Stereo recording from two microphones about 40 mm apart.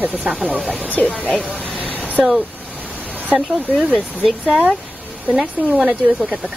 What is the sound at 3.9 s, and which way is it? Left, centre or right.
Speech, centre.